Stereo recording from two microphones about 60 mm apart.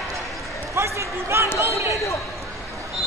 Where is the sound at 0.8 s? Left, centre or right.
Right.